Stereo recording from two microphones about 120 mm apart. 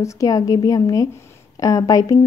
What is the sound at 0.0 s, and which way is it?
A woman's voice, 25° left (ahead or behind).